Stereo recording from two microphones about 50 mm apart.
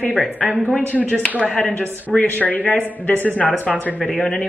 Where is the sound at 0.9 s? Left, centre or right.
Left.